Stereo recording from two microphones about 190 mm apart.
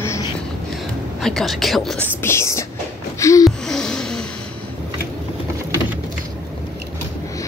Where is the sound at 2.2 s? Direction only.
15° left (ahead or behind).